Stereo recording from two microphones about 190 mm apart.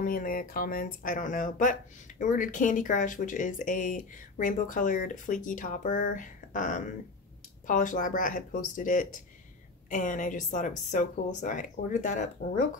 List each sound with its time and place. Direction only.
0.0 s speech: 50° left (ahead or behind)